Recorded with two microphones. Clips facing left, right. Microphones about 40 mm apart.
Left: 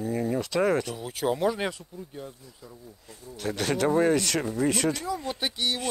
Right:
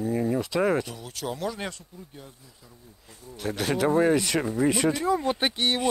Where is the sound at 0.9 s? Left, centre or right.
Centre.